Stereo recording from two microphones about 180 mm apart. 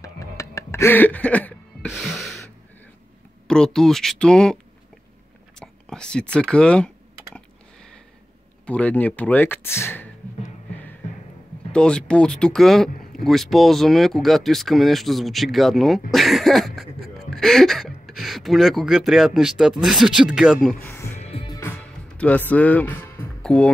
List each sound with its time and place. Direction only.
0.0 s music: 20° left (ahead or behind); by 2.4 s centre (ahead or behind)
3.4 s speech: 5° left (ahead or behind)
5.6 s speech: 5° left (ahead or behind)
8.6 s speech: 5° left (ahead or behind)
11.7 s speech: 5° left (ahead or behind)
20.8 s music: 15° left (ahead or behind)
21.3 s music: 30° left (ahead or behind)
21.7 s music: 10° left (ahead or behind)
22.5 s speech: 10° left (ahead or behind)